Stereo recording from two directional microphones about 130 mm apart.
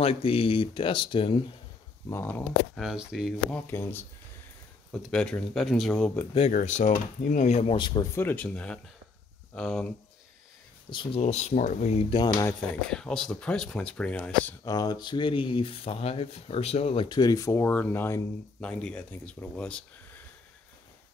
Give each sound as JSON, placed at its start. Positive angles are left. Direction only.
{"t": 0.0, "sound": "speech", "side_deg": 45}
{"t": 2.0, "sound": "speech", "side_deg": 15}
{"t": 2.7, "sound": "speech", "side_deg": 0}
{"t": 3.5, "sound": "speech", "side_deg": 15}
{"t": 4.9, "sound": "speech", "side_deg": 5}
{"t": 6.5, "sound": "speech", "side_deg": 65}
{"t": 7.7, "sound": "speech", "side_deg": 35}
{"t": 8.1, "sound": "speech", "side_deg": 15}
{"t": 10.9, "sound": "speech", "side_deg": 40}
{"t": 11.1, "sound": "speech", "side_deg": 60}
{"t": 12.1, "sound": "speech", "side_deg": 35}
{"t": 12.8, "sound": "speech", "side_deg": 5}
{"t": 14.6, "sound": "speech", "side_deg": 30}
{"t": 18.6, "sound": "speech", "side_deg": 10}